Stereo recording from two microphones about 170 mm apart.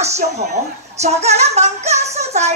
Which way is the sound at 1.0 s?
40° right (ahead or behind).